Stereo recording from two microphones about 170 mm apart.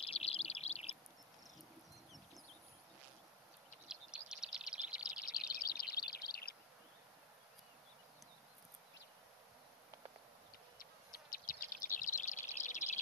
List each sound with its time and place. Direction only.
0.0 s bird: 35° left (ahead or behind)
3.8 s bird: 5° right (ahead or behind)
4.9 s bird vocalization: 55° left (ahead or behind)
5.5 s chirp: 60° left (ahead or behind)
10.8 s bird: 55° left (ahead or behind)